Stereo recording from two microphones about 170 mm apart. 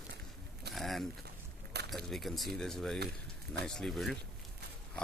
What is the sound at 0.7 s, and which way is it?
Speech, centre (ahead or behind).